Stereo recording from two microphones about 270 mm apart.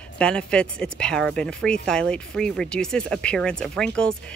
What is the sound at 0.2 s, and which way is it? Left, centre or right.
A woman's voice, centre.